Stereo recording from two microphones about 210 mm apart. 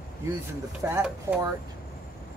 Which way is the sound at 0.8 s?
15° right (ahead or behind).